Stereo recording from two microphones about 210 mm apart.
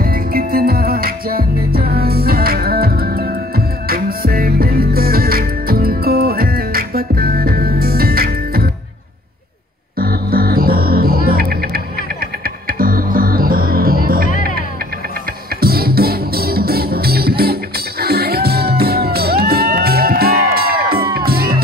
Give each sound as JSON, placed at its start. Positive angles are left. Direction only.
{"t": 0.0, "sound": "music", "side_deg": -45}
{"t": 9.9, "sound": "music", "side_deg": -45}
{"t": 15.6, "sound": "music", "side_deg": -45}